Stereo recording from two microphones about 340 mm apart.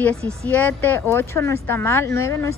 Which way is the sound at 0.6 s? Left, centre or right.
Centre.